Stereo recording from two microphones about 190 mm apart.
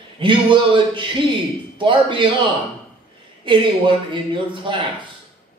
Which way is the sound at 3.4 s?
25° right (ahead or behind).